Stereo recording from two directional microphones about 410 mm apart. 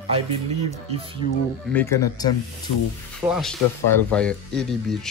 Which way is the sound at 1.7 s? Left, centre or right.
Centre.